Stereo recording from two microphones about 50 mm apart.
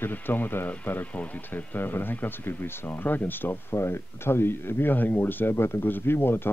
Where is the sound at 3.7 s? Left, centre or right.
Left.